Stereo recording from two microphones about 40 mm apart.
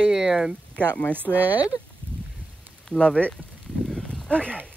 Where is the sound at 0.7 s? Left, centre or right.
Left.